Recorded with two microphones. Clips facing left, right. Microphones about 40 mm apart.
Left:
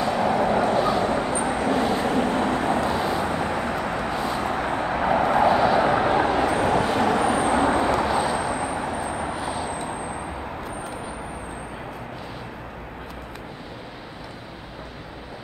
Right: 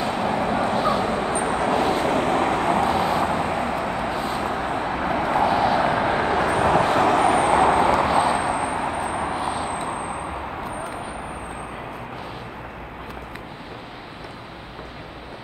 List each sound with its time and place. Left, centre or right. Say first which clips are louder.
0.1 s vehicle: left 4 dB; centre
1.5 s vehicle: right 2 dB; right
3.5 s vehicle: right 1 dB; centre
6.2 s vehicle: even; right
6.5 s vehicle: right 3 dB; right